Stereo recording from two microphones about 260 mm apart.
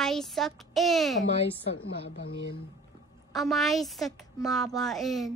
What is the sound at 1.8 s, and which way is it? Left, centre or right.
Speech, left.